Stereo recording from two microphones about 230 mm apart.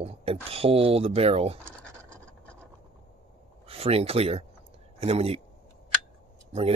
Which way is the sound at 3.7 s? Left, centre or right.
Right.